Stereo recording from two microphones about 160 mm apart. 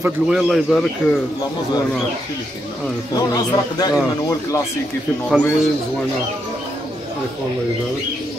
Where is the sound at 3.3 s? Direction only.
25° left (ahead or behind).